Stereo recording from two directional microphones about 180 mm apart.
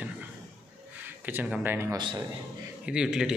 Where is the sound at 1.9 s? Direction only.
25° right (ahead or behind).